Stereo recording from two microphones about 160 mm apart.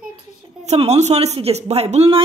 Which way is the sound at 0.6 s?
45° right (ahead or behind).